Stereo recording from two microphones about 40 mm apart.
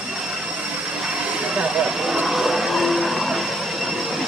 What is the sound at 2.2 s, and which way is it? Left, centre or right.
Vehicle, centre.